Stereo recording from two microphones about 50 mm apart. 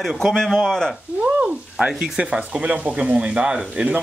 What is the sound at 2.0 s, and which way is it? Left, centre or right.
Speech, right.